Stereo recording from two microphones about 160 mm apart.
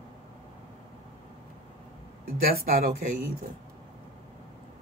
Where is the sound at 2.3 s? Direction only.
65° right (ahead or behind).